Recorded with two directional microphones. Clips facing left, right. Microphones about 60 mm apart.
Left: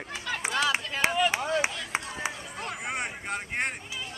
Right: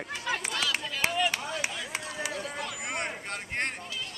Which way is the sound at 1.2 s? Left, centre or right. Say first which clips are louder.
Left 5 dB; left.